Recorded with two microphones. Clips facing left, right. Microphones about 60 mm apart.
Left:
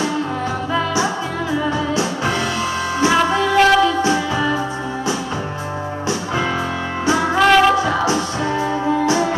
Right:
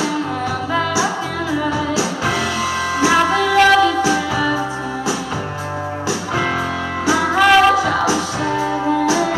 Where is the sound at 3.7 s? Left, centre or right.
Left.